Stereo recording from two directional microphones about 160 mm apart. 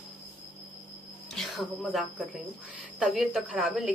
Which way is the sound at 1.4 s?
Centre (ahead or behind).